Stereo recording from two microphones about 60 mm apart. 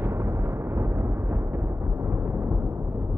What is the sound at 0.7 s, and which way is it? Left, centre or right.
Explosion, right.